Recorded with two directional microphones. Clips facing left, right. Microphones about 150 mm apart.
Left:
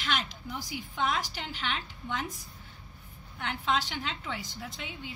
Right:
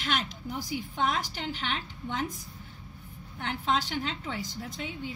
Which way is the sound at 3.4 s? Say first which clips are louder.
Right 1 dB; 40° right (ahead or behind).